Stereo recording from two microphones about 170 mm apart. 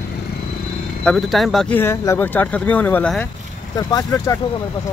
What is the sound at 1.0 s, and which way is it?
Speech, centre (ahead or behind).